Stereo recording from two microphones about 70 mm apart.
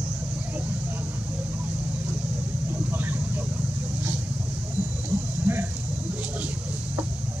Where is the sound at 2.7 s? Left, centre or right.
Right.